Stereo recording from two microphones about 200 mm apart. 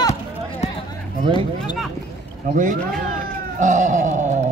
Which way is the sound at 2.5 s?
40° right (ahead or behind).